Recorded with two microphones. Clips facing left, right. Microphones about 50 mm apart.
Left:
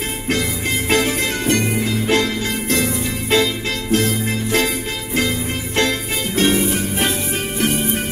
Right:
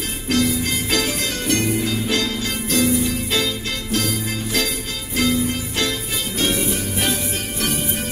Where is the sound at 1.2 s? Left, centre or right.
Left.